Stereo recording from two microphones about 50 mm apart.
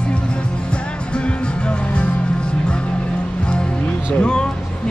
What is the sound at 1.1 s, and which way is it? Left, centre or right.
Music, left.